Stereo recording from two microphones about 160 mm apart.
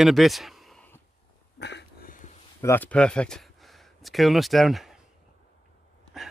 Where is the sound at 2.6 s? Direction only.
10° left (ahead or behind).